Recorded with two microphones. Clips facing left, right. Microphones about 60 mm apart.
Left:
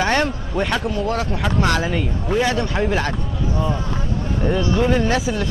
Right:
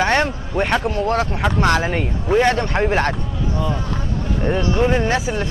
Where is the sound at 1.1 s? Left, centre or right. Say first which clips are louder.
Right 2 dB; right.